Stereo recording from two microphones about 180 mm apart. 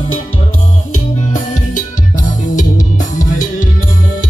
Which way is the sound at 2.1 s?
45° left (ahead or behind).